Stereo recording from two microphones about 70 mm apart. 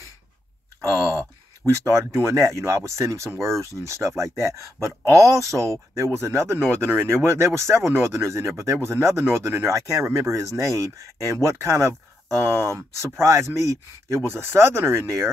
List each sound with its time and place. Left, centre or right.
1.7 s speech: right
9.7 s speech: right
11.3 s speech: right